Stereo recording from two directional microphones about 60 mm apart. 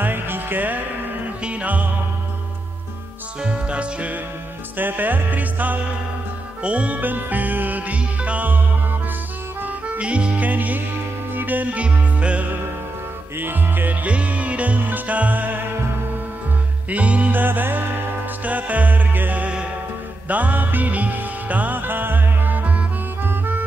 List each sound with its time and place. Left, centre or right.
0.0 s music: right
3.4 s music: centre
4.7 s music: right
13.4 s music: right
14.0 s music: right
16.9 s music: right